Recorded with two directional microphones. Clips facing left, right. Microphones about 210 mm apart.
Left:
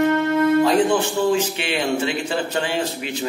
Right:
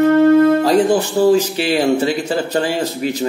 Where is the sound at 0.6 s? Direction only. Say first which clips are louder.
Right 3 dB; 35° right (ahead or behind).